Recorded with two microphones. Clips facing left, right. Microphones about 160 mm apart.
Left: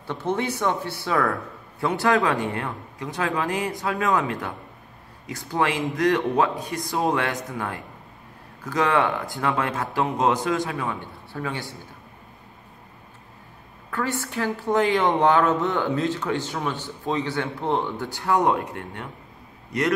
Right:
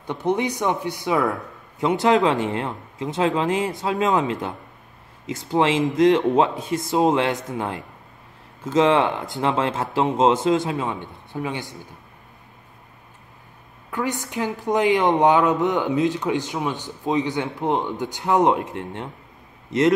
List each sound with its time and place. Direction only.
0.0 s a woman's voice: 15° right (ahead or behind)
13.8 s a woman's voice: 15° right (ahead or behind)